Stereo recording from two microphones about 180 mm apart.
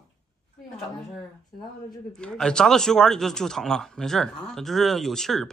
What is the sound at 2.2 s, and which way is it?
Speech, 5° left (ahead or behind).